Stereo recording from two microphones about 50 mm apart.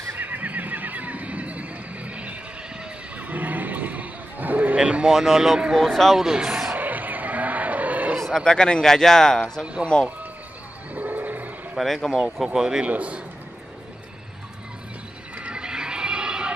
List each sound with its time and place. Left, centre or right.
0.1 s neigh: right
4.7 s speech: right
5.1 s speech: centre
6.1 s speech: centre
6.7 s a sound: right
8.2 s a sound: centre
8.5 s speech: centre
11.0 s a sound: right
11.8 s speech: centre
12.9 s speech: right
15.3 s neigh: right